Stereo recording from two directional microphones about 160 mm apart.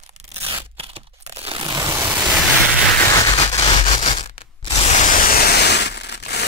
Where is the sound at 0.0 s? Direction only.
45° right (ahead or behind).